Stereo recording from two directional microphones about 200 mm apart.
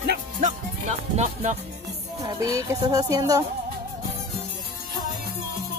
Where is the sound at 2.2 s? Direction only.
15° right (ahead or behind).